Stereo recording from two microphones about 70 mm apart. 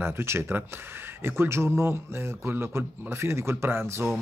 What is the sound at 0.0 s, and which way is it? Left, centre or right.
Speech, right.